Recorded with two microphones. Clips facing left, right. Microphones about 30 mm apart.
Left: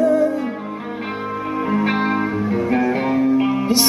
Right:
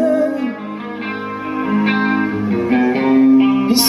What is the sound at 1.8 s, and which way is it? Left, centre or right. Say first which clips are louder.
Music: right 3 dB; right.